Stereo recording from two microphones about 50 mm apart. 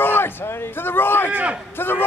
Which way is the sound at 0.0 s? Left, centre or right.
Left.